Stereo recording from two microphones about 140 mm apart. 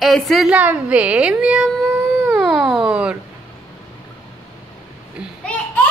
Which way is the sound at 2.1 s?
10° right (ahead or behind).